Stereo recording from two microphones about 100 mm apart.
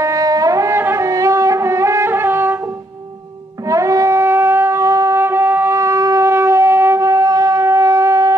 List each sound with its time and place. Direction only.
0.0 s music: 35° right (ahead or behind)
3.6 s wind instrument: 35° right (ahead or behind)